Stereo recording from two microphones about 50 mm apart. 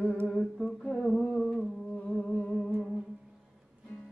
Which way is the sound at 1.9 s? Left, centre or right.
Left.